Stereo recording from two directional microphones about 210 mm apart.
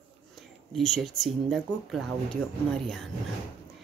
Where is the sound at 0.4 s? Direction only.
Centre (ahead or behind).